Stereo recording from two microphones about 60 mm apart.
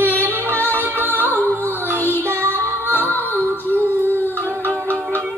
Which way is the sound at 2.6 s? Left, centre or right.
Right.